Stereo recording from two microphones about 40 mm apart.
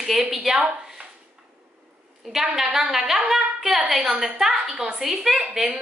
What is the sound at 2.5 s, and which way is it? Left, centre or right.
A woman's voice, centre.